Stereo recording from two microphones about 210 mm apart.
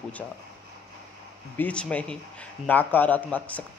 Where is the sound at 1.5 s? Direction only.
5° left (ahead or behind).